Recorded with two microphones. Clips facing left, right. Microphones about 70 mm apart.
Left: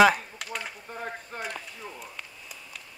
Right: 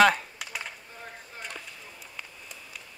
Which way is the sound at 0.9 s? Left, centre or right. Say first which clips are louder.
Left 8 dB; left.